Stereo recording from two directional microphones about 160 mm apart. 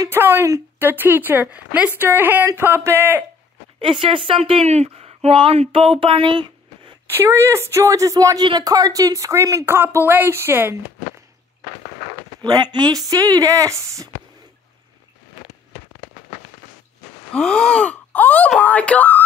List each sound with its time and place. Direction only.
0.0 s speech: 15° right (ahead or behind)
3.8 s speech: 30° right (ahead or behind)
7.1 s speech: 15° right (ahead or behind)
12.4 s speech: 25° right (ahead or behind)
17.3 s gasp: 5° left (ahead or behind)
18.6 s speech: 10° left (ahead or behind)